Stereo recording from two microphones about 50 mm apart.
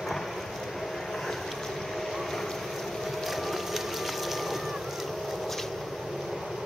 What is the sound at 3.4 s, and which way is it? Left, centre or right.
Vehicle, centre.